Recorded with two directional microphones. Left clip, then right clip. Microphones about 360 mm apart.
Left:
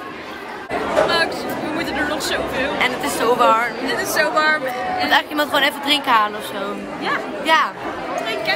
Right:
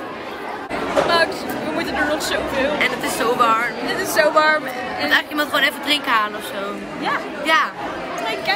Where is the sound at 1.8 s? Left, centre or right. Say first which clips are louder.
Right 2 dB; centre.